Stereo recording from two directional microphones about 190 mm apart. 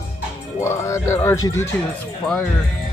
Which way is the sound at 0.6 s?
15° left (ahead or behind).